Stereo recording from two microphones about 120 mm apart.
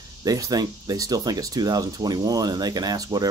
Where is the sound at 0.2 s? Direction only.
30° right (ahead or behind).